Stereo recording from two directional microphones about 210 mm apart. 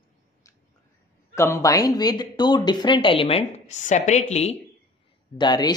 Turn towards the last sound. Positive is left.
turn(degrees=20)  # may be behind; listen again after turning